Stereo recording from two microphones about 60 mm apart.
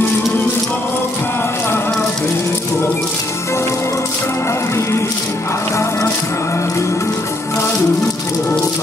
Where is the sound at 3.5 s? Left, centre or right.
Left.